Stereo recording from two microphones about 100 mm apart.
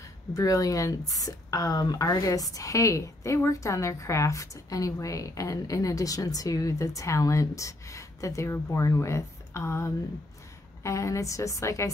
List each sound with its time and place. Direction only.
0.3 s a woman's voice: 35° left (ahead or behind)